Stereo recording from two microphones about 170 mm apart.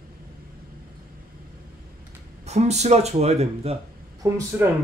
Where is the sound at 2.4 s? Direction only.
40° right (ahead or behind).